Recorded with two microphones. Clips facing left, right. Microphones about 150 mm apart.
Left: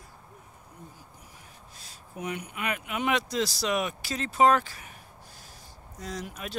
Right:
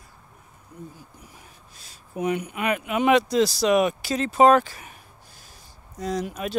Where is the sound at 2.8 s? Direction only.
90° right.